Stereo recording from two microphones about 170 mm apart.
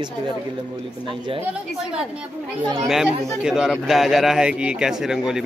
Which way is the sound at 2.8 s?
5° right (ahead or behind).